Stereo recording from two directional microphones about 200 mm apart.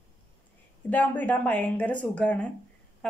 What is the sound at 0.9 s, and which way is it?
A woman's voice, 10° left (ahead or behind).